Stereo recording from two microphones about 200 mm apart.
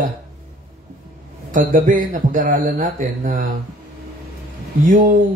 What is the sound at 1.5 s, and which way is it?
A man's voice, 45° right (ahead or behind).